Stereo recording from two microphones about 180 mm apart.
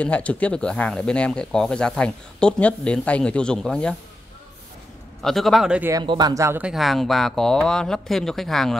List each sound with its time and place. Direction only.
0.0 s speech: 5° left (ahead or behind)
5.2 s speech: centre (ahead or behind)
5.9 s speech: 25° right (ahead or behind)
6.7 s speech: centre (ahead or behind)